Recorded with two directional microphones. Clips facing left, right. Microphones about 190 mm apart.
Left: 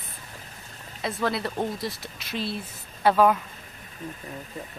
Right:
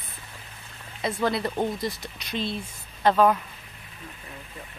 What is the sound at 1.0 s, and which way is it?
Speech, centre (ahead or behind).